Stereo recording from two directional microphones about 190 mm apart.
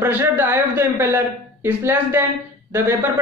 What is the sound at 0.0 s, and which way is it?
A man's voice, 10° right (ahead or behind).